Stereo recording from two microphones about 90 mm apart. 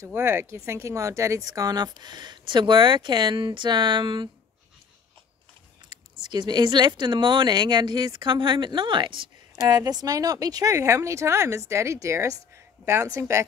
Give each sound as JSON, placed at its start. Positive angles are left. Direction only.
{"t": 0.0, "sound": "speech", "side_deg": -30}
{"t": 5.9, "sound": "speech", "side_deg": -55}
{"t": 9.7, "sound": "speech", "side_deg": -50}